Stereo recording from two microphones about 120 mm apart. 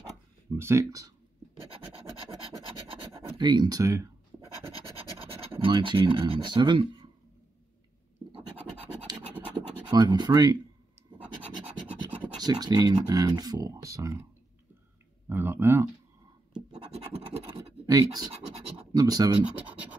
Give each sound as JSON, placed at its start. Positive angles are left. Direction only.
{"t": 0.6, "sound": "speech", "side_deg": -25}
{"t": 1.7, "sound": "scratch", "side_deg": -50}
{"t": 3.2, "sound": "speech", "side_deg": -40}
{"t": 5.6, "sound": "speech", "side_deg": -45}
{"t": 9.8, "sound": "speech", "side_deg": -35}
{"t": 12.4, "sound": "speech", "side_deg": -35}
{"t": 15.2, "sound": "speech", "side_deg": -20}
{"t": 16.9, "sound": "scratch", "side_deg": -55}
{"t": 17.8, "sound": "speech", "side_deg": -30}